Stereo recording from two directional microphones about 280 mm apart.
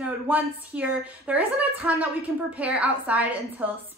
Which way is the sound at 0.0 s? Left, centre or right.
Centre.